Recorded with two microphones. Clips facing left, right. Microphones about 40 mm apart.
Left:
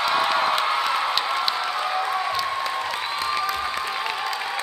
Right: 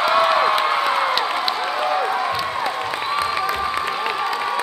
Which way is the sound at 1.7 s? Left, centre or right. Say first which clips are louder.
Right 4 dB; centre.